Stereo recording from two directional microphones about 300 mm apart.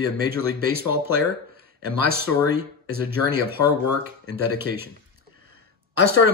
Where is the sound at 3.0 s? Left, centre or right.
Right.